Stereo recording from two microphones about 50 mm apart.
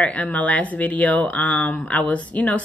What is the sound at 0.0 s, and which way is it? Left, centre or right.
Speech, left.